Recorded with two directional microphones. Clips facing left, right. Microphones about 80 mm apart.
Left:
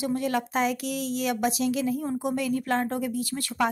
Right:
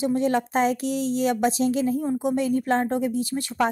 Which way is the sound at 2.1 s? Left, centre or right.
Right.